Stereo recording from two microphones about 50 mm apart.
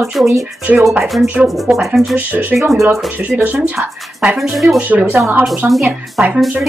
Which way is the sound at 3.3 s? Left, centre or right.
Right.